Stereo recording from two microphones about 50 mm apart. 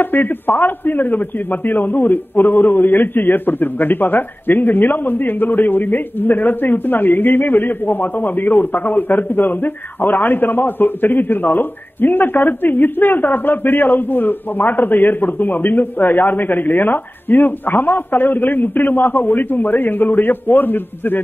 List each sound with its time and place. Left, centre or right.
0.0 s a man's voice: left